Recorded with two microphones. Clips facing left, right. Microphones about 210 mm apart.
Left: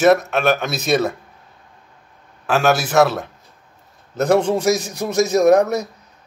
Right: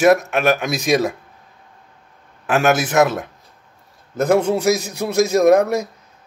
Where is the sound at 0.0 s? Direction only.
15° right (ahead or behind).